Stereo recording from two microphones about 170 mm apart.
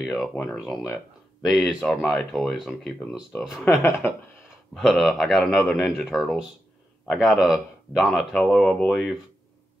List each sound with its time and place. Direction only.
0.0 s speech: centre (ahead or behind)